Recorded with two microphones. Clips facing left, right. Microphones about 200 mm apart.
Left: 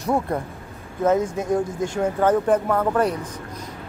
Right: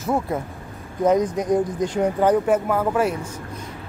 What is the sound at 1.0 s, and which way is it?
Speech, 15° right (ahead or behind).